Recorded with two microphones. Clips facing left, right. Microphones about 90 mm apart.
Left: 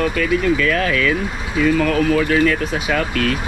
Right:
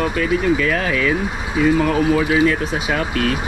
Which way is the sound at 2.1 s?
70° left (ahead or behind).